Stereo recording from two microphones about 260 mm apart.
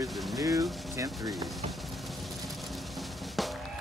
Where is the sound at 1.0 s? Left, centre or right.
Centre.